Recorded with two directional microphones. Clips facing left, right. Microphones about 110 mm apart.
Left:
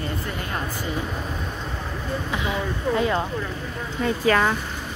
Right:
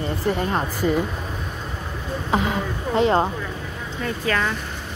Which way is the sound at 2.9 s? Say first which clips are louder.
Right 4 dB; 25° right (ahead or behind).